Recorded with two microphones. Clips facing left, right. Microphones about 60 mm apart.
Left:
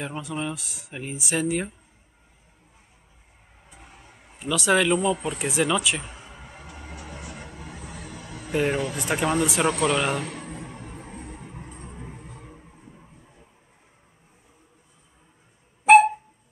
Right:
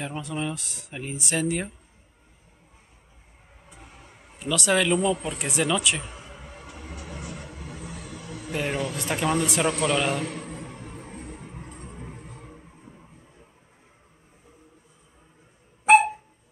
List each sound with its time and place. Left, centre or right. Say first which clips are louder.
0.0 s speech: even; centre
4.4 s speech: left 2 dB; centre
8.5 s speech: left 4 dB; centre